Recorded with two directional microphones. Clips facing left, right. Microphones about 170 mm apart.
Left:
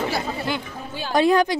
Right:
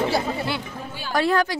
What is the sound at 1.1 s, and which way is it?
Speech, 20° left (ahead or behind).